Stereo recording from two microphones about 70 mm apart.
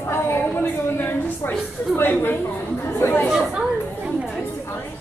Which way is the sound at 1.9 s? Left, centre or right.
Left.